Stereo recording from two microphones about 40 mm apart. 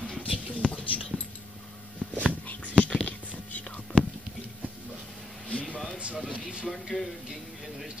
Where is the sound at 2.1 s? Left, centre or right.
Left.